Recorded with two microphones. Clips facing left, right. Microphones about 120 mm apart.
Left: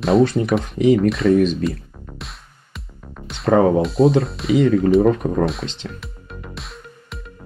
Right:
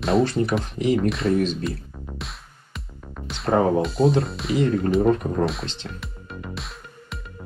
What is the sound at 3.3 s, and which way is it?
Speech, centre (ahead or behind).